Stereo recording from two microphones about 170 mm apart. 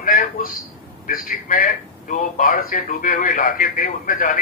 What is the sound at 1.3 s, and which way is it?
Speech, 55° left (ahead or behind).